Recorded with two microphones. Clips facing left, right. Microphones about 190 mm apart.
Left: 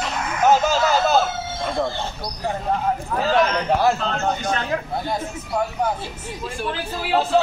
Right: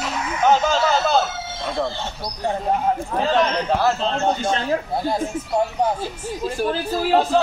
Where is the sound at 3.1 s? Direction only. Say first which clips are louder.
Left 1 dB; 30° right (ahead or behind).